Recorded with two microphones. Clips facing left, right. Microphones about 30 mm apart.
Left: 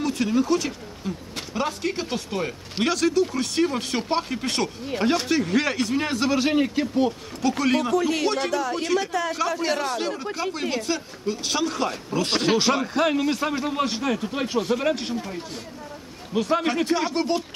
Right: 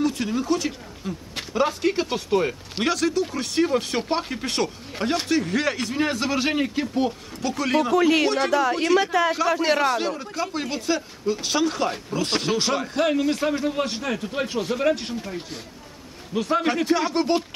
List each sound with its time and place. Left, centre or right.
0.0 s speech: centre
7.9 s a man's voice: right
8.3 s a man's voice: centre
8.5 s a man's voice: right
10.5 s speech: centre
16.3 s speech: centre